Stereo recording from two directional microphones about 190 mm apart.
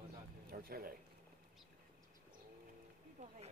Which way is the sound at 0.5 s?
50° right (ahead or behind).